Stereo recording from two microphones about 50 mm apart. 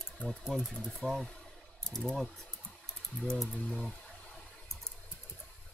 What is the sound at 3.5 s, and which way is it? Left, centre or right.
Speech, centre.